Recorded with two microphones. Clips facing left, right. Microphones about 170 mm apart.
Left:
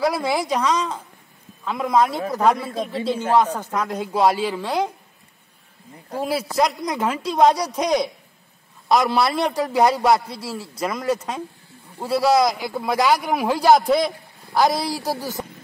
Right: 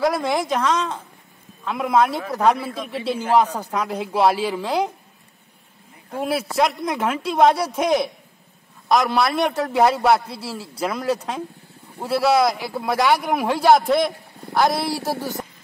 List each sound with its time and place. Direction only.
0.0 s speech: 5° left (ahead or behind)
1.6 s speech: 5° right (ahead or behind)
2.7 s a man's voice: 30° left (ahead or behind)
3.7 s speech: 10° right (ahead or behind)
6.1 s speech: 5° right (ahead or behind)
10.2 s a man's voice: 30° right (ahead or behind)
10.8 s speech: 5° right (ahead or behind)